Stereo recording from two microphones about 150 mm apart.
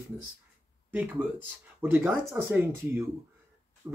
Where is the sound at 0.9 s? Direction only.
10° right (ahead or behind).